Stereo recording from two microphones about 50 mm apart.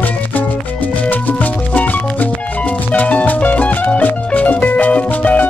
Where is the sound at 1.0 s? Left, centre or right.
Left.